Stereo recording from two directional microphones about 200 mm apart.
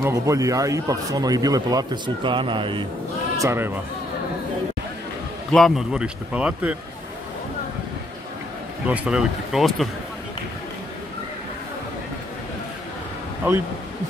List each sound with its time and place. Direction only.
0.0 s a man's voice: 15° right (ahead or behind)
3.3 s speech: 15° right (ahead or behind)
5.5 s speech: centre (ahead or behind)
8.8 s speech: 5° right (ahead or behind)